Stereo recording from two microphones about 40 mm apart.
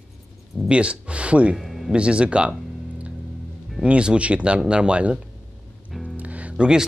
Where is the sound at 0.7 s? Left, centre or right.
Right.